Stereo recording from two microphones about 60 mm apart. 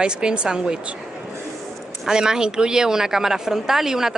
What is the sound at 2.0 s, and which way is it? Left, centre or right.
A woman's voice, centre.